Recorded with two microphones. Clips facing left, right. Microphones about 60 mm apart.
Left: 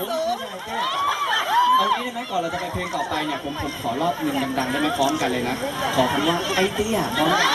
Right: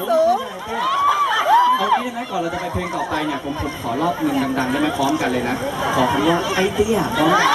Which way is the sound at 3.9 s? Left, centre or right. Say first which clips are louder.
Right 4 dB; right.